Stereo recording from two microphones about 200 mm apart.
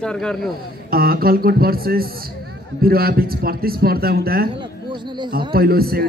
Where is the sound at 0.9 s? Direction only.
50° right (ahead or behind).